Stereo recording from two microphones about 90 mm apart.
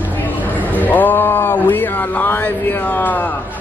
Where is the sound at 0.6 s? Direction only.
20° left (ahead or behind).